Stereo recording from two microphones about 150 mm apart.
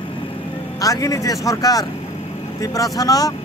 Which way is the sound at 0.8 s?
25° left (ahead or behind).